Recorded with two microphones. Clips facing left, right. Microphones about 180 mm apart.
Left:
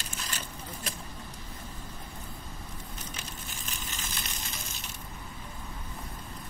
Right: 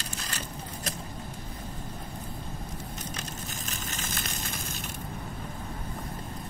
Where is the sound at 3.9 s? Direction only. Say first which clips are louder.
Right 5 dB; 45° right (ahead or behind).